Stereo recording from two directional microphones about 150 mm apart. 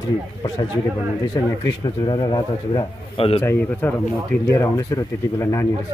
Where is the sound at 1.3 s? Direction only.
25° left (ahead or behind).